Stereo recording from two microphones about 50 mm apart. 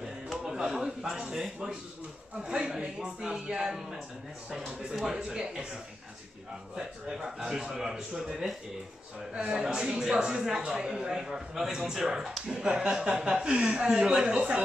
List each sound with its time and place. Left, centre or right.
0.0 s speech: centre
4.9 s speech: centre